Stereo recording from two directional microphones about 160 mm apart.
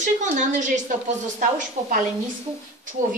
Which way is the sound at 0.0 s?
50° right (ahead or behind).